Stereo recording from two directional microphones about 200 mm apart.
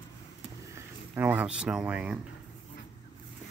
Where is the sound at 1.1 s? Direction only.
10° right (ahead or behind).